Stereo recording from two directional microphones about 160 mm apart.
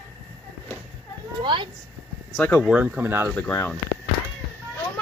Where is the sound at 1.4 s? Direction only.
30° right (ahead or behind).